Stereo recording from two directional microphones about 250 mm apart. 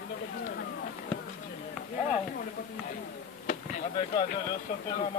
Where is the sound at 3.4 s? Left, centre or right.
Left.